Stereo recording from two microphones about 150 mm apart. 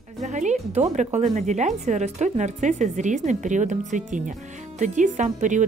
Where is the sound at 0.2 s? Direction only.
50° right (ahead or behind).